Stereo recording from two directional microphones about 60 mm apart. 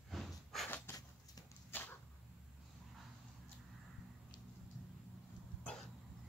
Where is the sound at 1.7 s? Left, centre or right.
Left.